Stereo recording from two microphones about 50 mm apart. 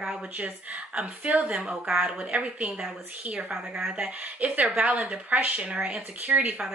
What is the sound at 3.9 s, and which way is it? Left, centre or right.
A woman's voice, right.